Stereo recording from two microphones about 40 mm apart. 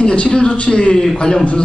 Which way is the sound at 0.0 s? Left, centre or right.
Left.